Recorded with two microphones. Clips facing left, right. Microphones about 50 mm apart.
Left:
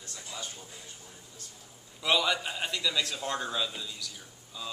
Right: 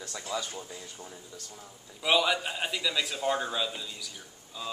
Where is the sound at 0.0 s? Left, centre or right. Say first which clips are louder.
Right 7 dB; right.